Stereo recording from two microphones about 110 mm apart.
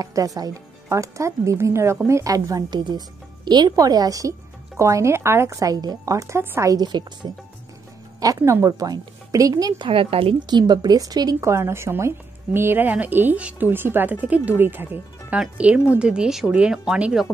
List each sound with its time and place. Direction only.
0.0 s speech: 35° right (ahead or behind)
9.8 s a woman's voice: 55° right (ahead or behind)
10.5 s speech: 40° right (ahead or behind)
11.4 s a woman's voice: 25° right (ahead or behind); by 17.3 s 5° right (ahead or behind)